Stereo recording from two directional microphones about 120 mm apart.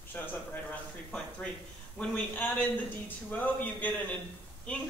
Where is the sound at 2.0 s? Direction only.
15° left (ahead or behind).